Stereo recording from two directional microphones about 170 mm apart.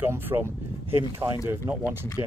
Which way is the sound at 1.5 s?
10° right (ahead or behind).